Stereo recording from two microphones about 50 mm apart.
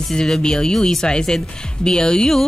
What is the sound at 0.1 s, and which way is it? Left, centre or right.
A woman's voice, centre.